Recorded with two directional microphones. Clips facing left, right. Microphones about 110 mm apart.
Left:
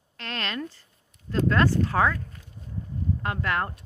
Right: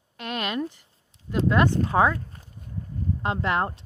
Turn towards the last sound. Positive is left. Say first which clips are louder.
# right 3 dB
turn(degrees=-20)  # may be behind; listen again after turning